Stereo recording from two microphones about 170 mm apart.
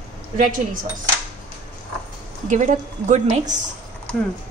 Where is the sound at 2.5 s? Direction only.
45° right (ahead or behind).